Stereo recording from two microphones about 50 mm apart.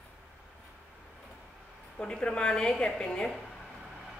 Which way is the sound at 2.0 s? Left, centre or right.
Centre.